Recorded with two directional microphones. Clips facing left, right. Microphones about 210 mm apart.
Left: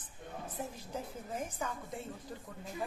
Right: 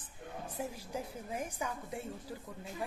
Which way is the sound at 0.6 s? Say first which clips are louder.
Right 2 dB; 10° right (ahead or behind).